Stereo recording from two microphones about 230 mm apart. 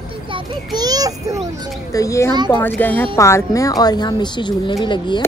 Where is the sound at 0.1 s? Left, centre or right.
Right.